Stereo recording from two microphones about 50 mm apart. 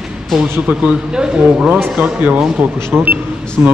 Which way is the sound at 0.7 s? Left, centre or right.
Right.